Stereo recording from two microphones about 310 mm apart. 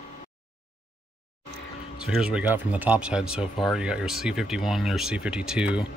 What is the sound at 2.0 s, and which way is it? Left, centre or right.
Speech, centre.